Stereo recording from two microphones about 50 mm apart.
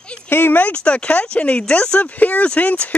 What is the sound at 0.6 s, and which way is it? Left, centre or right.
Speech, left.